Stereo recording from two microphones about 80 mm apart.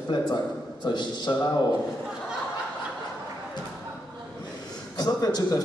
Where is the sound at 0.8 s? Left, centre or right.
Left.